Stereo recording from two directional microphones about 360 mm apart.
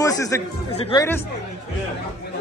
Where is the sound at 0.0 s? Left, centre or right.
Centre.